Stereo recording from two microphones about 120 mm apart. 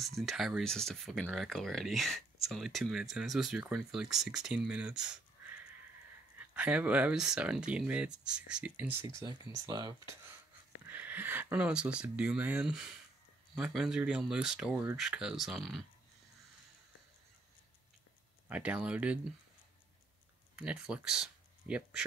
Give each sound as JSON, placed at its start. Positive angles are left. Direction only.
{"t": 0.0, "sound": "speech", "side_deg": 0}
{"t": 9.0, "sound": "speech", "side_deg": -35}
{"t": 10.9, "sound": "speech", "side_deg": -15}
{"t": 18.5, "sound": "speech", "side_deg": -10}
{"t": 20.5, "sound": "speech", "side_deg": -10}